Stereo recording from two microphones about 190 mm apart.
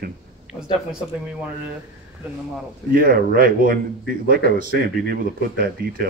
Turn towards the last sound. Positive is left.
turn(degrees=-50)  # may be behind; listen again after turning